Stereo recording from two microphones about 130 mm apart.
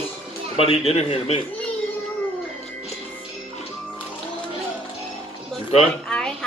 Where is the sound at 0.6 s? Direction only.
50° left (ahead or behind).